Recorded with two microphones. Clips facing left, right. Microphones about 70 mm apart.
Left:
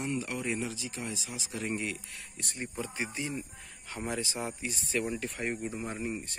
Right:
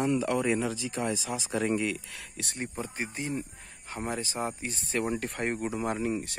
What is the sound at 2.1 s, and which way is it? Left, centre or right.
Speech, right.